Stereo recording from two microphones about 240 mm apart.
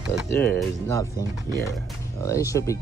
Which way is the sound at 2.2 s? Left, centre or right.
Centre.